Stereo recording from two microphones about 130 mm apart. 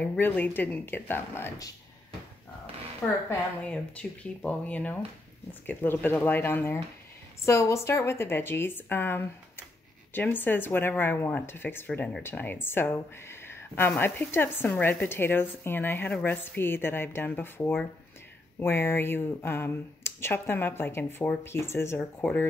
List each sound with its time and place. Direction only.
0.0 s speech: 10° left (ahead or behind)
3.0 s a woman's voice: 5° left (ahead or behind)